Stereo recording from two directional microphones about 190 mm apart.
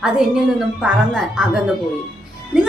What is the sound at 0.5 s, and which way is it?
A woman's voice, 5° right (ahead or behind).